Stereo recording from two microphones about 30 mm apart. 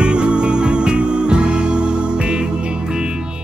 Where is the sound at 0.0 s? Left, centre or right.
Right.